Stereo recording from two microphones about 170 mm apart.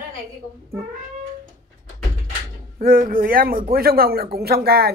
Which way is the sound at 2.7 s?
55° right (ahead or behind).